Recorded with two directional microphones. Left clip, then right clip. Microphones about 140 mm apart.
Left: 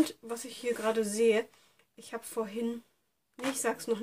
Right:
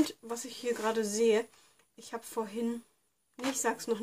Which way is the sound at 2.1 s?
15° left (ahead or behind).